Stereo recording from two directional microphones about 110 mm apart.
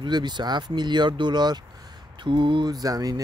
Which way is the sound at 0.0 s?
40° right (ahead or behind).